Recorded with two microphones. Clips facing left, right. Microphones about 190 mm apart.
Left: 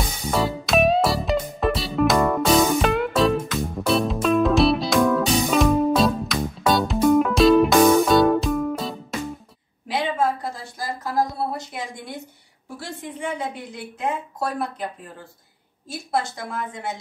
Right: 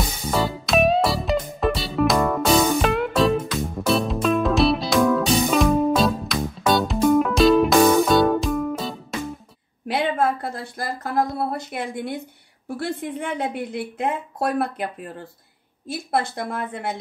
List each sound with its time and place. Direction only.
0.3 s music: centre (ahead or behind)
9.8 s a sound: 60° right (ahead or behind)
12.6 s a woman's voice: 60° right (ahead or behind)